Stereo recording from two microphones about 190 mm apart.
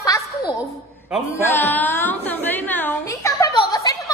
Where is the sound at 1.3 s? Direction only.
10° left (ahead or behind).